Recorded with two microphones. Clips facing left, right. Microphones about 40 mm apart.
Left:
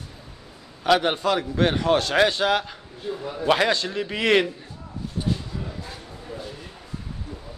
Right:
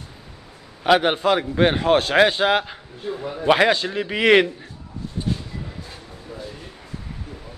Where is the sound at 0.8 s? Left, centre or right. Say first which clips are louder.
Right 3 dB; right.